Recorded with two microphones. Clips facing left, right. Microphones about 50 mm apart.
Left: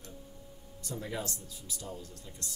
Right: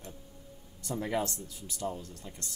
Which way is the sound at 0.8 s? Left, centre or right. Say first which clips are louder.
Right 6 dB; right.